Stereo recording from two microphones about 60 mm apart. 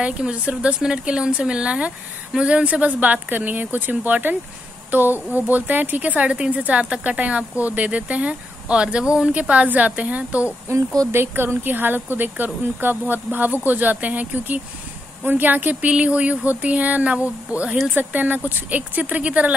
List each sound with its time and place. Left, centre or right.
0.0 s speech: centre
11.1 s speech: right